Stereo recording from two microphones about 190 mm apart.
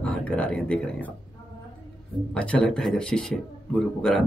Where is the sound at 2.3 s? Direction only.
5° left (ahead or behind).